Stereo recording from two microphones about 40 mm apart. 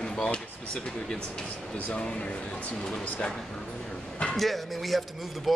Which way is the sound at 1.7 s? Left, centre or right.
Left.